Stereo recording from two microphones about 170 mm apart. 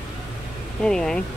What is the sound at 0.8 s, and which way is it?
Speech, 5° left (ahead or behind).